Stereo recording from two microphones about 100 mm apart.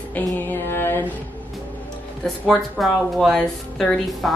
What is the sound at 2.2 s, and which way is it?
Speech, 5° left (ahead or behind).